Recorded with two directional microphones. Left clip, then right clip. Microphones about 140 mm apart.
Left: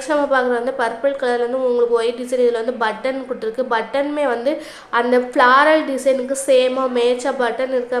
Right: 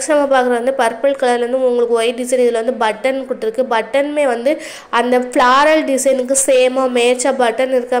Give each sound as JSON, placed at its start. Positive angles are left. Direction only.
{"t": 0.1, "sound": "a woman's voice", "side_deg": -20}